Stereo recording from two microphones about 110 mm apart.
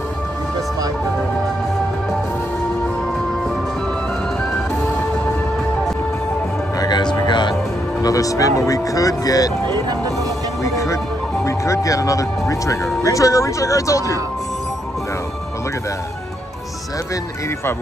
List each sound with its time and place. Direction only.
6.8 s music: 40° left (ahead or behind)
8.0 s speech: 30° left (ahead or behind)
9.7 s vehicle: 40° right (ahead or behind)
10.6 s music: 30° left (ahead or behind)
11.4 s speech: 30° left (ahead or behind)